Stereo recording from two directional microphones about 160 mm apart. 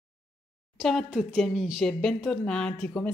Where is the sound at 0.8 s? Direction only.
Centre (ahead or behind).